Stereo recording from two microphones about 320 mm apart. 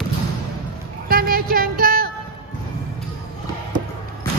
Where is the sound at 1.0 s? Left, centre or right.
Right.